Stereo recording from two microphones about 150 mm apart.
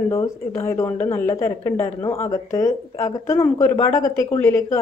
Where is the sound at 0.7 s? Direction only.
20° left (ahead or behind).